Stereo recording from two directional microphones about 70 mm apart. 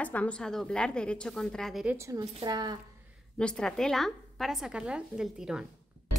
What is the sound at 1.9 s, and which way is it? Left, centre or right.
Speech, right.